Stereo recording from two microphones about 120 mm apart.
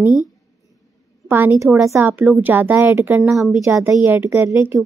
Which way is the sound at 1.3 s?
20° right (ahead or behind).